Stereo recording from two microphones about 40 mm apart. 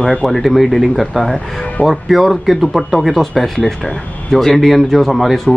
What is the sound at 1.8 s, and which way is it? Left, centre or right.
Speech, centre.